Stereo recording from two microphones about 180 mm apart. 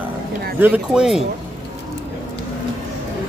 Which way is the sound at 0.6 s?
10° right (ahead or behind).